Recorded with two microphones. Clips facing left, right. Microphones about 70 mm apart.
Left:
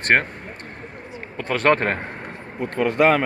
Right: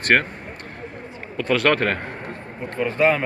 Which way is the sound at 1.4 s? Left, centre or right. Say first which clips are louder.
Even; left.